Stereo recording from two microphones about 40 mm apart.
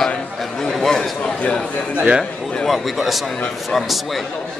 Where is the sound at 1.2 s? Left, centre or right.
Left.